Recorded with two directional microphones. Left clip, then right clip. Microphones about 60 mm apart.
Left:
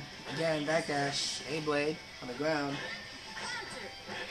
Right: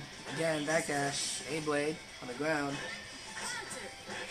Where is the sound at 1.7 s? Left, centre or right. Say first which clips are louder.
Left 2 dB; left.